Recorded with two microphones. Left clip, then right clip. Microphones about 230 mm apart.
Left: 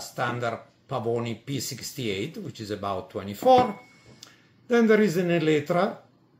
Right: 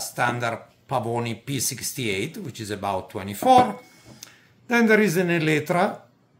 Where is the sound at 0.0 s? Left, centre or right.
Right.